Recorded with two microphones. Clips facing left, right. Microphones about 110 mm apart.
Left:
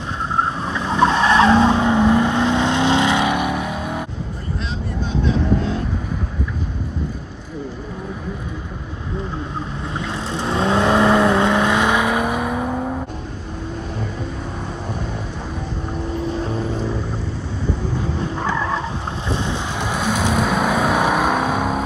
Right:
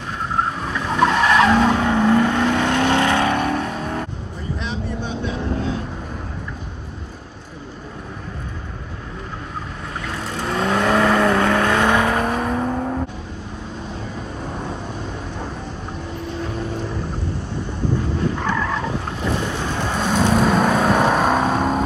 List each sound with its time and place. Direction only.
0.4 s vehicle: 25° left (ahead or behind); by 4.0 s 10° left (ahead or behind)
10.3 s vehicle: 25° left (ahead or behind); by 13.0 s 5° left (ahead or behind)
18.4 s vehicle: 15° left (ahead or behind)